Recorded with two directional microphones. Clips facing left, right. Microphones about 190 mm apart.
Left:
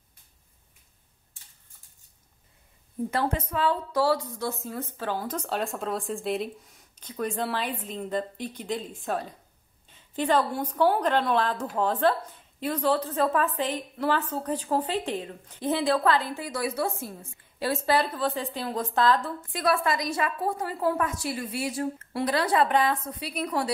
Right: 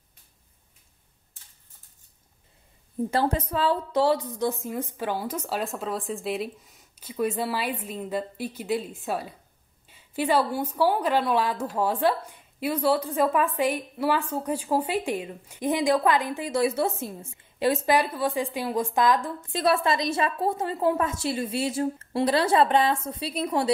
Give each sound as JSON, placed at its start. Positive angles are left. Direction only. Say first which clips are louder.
{"t": 3.1, "sound": "a woman's voice", "louder": "right 3 dB", "side_deg": -35}
{"t": 19.5, "sound": "a woman's voice", "louder": "right 2 dB", "side_deg": -25}